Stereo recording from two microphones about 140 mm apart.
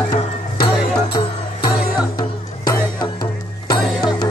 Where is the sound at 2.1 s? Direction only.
30° left (ahead or behind).